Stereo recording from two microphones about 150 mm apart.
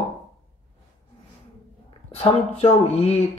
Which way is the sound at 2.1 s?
40° left (ahead or behind).